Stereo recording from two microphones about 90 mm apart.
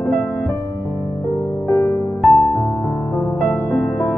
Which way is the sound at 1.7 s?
30° left (ahead or behind).